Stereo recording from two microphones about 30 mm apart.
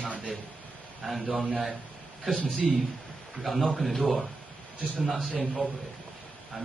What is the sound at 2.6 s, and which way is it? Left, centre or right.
Speech, centre.